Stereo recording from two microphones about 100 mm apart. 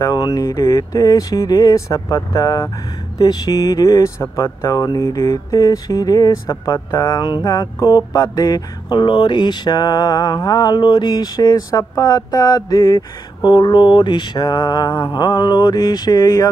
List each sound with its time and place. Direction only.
0.0 s speech: 40° left (ahead or behind)
7.4 s mantra: 35° left (ahead or behind)